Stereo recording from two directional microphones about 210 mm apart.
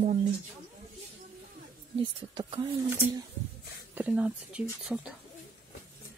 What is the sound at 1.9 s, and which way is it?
Speech, 20° right (ahead or behind).